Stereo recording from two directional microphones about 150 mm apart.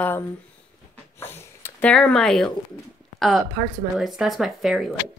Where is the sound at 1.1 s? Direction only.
15° left (ahead or behind).